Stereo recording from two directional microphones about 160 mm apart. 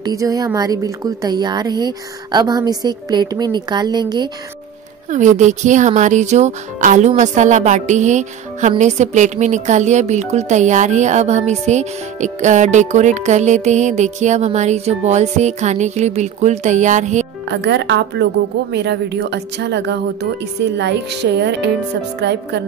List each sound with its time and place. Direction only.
0.0 s a woman's voice: 20° right (ahead or behind)
5.1 s speech: 50° right (ahead or behind)
17.5 s a woman's voice: 90° right